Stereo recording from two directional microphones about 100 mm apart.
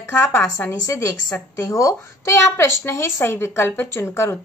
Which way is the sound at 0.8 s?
30° left (ahead or behind).